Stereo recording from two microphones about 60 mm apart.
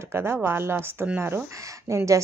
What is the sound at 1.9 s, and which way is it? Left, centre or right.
Speech, right.